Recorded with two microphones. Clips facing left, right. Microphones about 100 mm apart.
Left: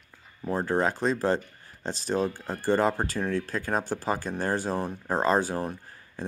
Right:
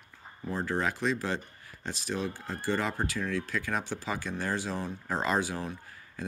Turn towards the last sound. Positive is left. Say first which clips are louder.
# left 2 dB
turn(degrees=35)  # may be behind; listen again after turning